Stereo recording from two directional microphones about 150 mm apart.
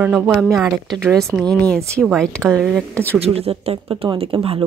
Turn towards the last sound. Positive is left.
turn(degrees=-35)  # may be behind; listen again after turning